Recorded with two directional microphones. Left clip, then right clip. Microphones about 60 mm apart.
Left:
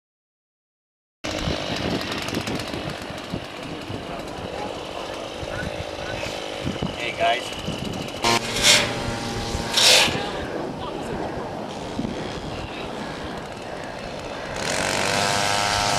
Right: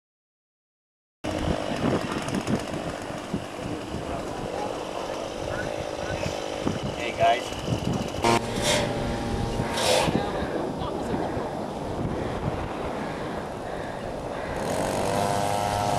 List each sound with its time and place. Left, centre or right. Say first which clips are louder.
1.3 s chainsaw: left 2 dB; centre
6.2 s vehicle: even; centre
9.7 s a sound: left 7 dB; centre
14.6 s vehicle: left 4 dB; centre